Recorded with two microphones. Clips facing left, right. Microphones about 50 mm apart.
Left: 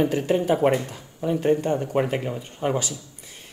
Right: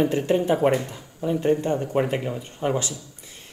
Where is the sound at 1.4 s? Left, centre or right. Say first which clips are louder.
Left 1 dB; left.